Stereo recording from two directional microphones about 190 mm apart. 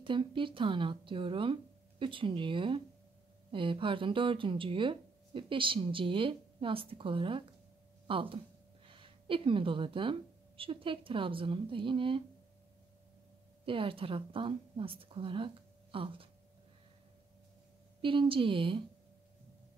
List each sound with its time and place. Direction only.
0.0 s speech: 25° right (ahead or behind)
13.7 s speech: 25° right (ahead or behind)
18.0 s speech: 25° right (ahead or behind)